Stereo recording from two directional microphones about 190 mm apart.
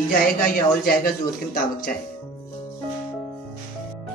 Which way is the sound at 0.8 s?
50° left (ahead or behind).